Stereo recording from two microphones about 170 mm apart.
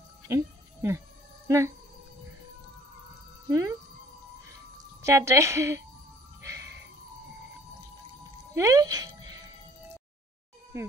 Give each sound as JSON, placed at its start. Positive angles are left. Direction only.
{"t": 0.3, "sound": "music", "side_deg": -15}
{"t": 3.4, "sound": "speech", "side_deg": -20}
{"t": 5.0, "sound": "a woman's voice", "side_deg": -15}
{"t": 6.4, "sound": "a sound", "side_deg": -20}
{"t": 8.5, "sound": "music", "side_deg": -20}
{"t": 10.7, "sound": "a woman's voice", "side_deg": -15}